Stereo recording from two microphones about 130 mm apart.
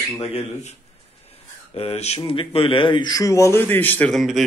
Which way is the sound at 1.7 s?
50° left (ahead or behind).